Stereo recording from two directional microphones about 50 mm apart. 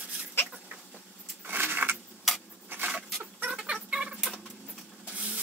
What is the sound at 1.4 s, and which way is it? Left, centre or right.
Keys jangling, right.